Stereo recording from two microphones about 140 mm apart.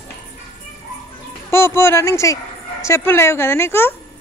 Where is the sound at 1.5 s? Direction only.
15° left (ahead or behind).